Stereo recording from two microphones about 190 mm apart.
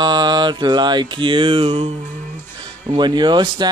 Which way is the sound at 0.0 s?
20° right (ahead or behind).